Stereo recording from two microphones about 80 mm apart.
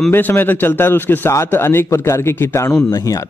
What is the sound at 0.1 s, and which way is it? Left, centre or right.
A man's voice, left.